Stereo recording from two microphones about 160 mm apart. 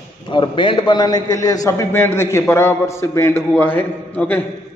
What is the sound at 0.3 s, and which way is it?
A man's voice, 30° left (ahead or behind).